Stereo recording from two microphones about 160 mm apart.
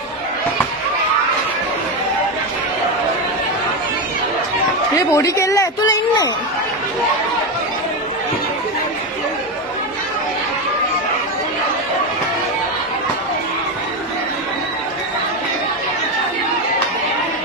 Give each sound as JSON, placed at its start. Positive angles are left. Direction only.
{"t": 5.1, "sound": "speech", "side_deg": 20}